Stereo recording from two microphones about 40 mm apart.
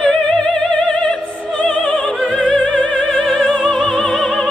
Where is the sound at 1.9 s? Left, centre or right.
Centre.